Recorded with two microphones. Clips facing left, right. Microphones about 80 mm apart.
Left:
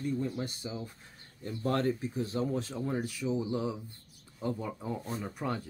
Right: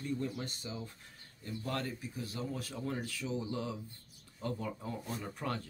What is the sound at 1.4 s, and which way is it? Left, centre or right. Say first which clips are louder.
Speech: left 8 dB; left.